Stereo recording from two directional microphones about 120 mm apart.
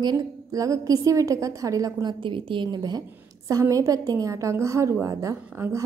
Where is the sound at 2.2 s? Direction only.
45° right (ahead or behind).